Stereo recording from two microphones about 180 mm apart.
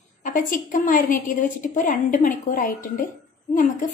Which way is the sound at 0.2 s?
45° left (ahead or behind).